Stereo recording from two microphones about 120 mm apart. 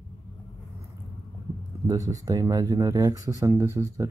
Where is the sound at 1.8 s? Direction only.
30° right (ahead or behind).